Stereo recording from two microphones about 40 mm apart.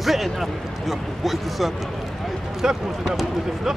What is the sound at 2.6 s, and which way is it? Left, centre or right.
Speech, centre.